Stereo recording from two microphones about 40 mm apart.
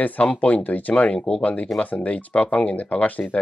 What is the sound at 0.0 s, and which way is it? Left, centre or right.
Speech, left.